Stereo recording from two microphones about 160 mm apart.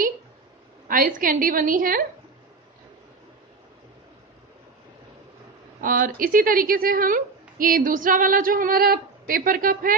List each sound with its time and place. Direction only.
0.8 s a woman's voice: 60° right (ahead or behind)
5.8 s a woman's voice: 60° right (ahead or behind)